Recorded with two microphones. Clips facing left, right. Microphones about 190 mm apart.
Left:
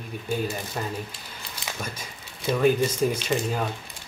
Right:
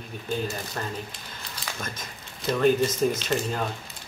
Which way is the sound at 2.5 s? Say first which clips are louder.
Even; 10° left (ahead or behind).